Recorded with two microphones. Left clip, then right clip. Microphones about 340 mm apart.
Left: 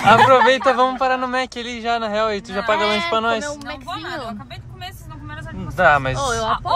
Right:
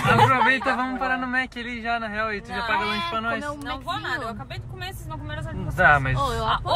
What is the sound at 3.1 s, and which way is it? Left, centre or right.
Speech, centre.